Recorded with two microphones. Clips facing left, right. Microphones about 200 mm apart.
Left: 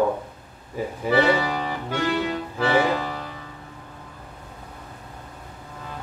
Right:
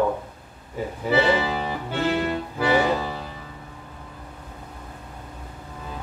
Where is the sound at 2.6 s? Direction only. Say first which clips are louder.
Even; 10° right (ahead or behind).